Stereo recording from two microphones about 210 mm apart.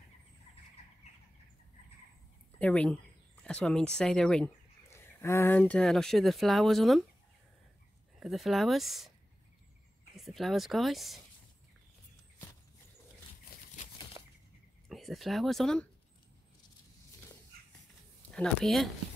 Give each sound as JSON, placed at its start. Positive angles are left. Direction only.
{"t": 2.6, "sound": "speech", "side_deg": 5}
{"t": 8.2, "sound": "speech", "side_deg": 0}
{"t": 10.1, "sound": "speech", "side_deg": 0}
{"t": 14.2, "sound": "bird flight", "side_deg": -15}
{"t": 14.9, "sound": "speech", "side_deg": 0}
{"t": 18.3, "sound": "speech", "side_deg": 0}